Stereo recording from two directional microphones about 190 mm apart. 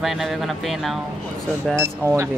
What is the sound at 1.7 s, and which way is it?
Speech, 15° right (ahead or behind).